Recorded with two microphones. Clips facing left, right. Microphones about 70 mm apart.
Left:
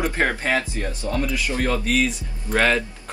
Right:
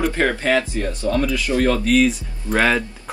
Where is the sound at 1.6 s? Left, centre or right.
Centre.